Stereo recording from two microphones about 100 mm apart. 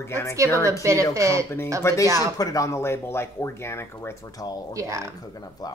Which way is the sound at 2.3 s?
35° left (ahead or behind).